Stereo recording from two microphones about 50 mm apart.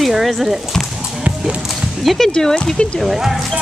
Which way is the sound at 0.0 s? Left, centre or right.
Centre.